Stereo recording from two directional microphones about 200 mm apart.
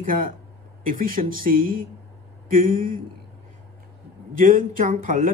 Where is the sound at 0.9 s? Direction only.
45° right (ahead or behind).